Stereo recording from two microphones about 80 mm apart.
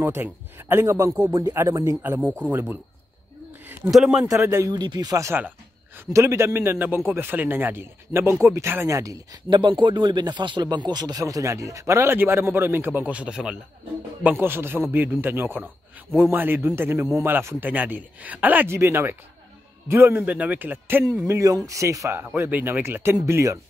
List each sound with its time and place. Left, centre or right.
0.0 s a man's voice: right
3.9 s speech: centre
4.4 s a man's voice: right
4.6 s speech: right
5.9 s a man's voice: right
8.8 s speech: right
9.5 s speech: right; by 13.6 s centre
14.4 s a man's voice: right
18.7 s a man's voice: right
20.2 s a man's voice: centre
21.3 s a man's voice: right
22.1 s a man's voice: right